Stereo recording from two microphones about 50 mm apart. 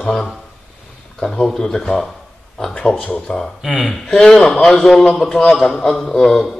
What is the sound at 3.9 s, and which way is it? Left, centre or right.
A man's voice, centre.